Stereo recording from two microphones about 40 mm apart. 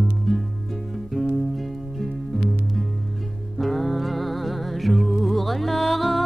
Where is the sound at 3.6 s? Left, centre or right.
Centre.